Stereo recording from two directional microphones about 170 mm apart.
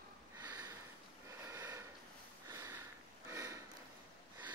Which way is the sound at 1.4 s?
15° right (ahead or behind).